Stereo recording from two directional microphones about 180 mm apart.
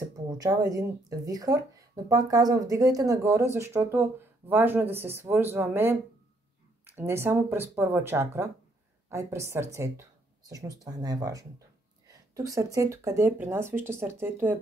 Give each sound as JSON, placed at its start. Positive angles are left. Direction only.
{"t": 0.4, "sound": "speech", "side_deg": -20}
{"t": 12.1, "sound": "a sound", "side_deg": -20}
{"t": 12.7, "sound": "speech", "side_deg": -15}